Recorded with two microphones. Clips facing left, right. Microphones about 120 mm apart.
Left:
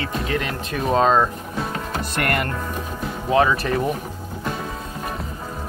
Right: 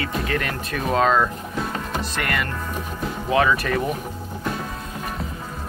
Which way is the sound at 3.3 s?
30° left (ahead or behind).